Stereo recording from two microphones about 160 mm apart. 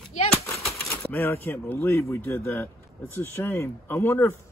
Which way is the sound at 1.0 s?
10° left (ahead or behind).